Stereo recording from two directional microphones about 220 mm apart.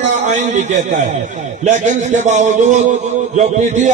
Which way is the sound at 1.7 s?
30° right (ahead or behind).